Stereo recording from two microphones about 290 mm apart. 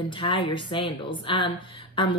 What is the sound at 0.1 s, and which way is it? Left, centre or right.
Speech, centre.